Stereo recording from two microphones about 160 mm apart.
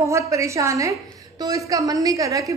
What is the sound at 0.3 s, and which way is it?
A woman's voice, 20° right (ahead or behind).